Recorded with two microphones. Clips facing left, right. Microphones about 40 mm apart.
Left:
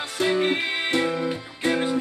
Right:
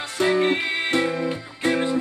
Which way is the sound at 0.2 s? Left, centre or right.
Centre.